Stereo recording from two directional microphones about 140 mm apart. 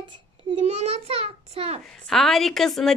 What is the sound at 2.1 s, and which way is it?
Speech, centre (ahead or behind).